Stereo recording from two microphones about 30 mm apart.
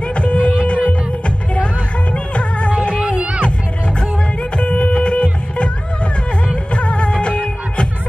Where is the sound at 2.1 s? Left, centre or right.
Left.